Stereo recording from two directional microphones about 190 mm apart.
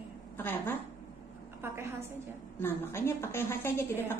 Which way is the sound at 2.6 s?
10° left (ahead or behind).